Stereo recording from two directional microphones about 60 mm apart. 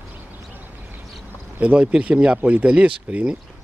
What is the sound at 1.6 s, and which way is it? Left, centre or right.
Speech, centre.